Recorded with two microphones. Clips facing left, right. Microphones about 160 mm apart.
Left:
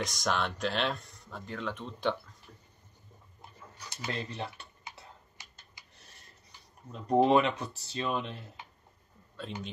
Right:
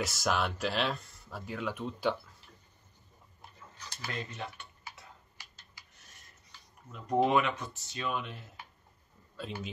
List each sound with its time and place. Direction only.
0.0 s speech: 5° right (ahead or behind)
4.1 s speech: 30° left (ahead or behind)
4.9 s typing: 20° left (ahead or behind)
6.9 s speech: 30° left (ahead or behind)
9.4 s speech: 5° right (ahead or behind)